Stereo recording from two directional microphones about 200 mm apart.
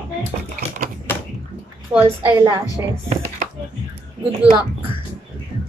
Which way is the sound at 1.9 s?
15° right (ahead or behind).